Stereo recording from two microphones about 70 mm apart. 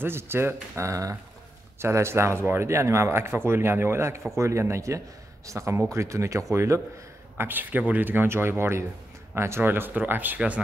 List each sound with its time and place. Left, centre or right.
0.0 s speech: right
1.8 s speech: right
7.3 s speech: right